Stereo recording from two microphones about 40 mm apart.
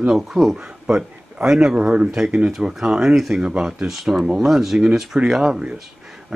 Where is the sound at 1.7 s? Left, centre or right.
Right.